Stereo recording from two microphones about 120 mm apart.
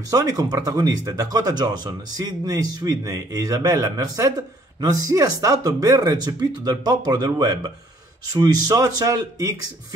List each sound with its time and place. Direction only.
0.1 s speech: 30° right (ahead or behind)